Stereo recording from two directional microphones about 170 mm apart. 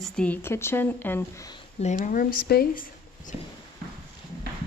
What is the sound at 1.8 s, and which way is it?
Speech, 45° left (ahead or behind).